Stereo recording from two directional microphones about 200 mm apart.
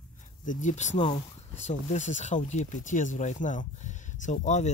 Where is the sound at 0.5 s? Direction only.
40° left (ahead or behind).